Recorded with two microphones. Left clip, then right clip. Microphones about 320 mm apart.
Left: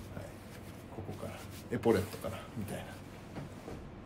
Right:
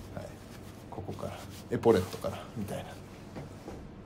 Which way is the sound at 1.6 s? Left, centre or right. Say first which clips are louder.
Right 5 dB; centre.